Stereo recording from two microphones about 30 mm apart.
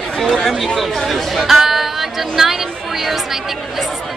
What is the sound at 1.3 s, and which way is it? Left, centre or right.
Speech, centre.